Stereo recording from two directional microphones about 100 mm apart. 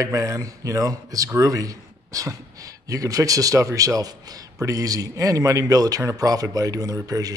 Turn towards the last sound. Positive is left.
turn(degrees=-35)  # may be behind; listen again after turning